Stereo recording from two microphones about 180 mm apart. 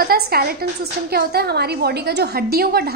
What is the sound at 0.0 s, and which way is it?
A woman's voice, 60° right (ahead or behind).